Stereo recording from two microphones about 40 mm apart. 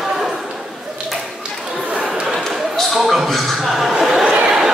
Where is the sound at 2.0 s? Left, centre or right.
Centre.